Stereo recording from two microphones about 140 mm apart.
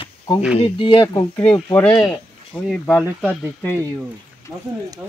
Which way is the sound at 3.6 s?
15° left (ahead or behind).